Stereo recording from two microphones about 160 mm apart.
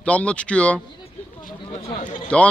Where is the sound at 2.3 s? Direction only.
5° left (ahead or behind).